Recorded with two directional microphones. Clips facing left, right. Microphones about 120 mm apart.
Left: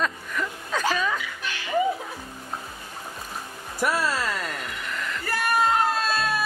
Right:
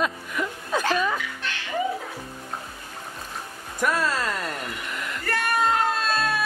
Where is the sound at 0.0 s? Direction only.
10° right (ahead or behind).